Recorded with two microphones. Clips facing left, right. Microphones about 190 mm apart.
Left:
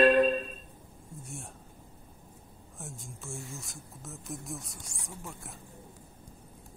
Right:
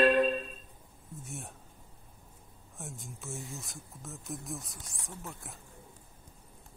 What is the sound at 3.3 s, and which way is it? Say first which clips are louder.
Speech: even; 20° right (ahead or behind).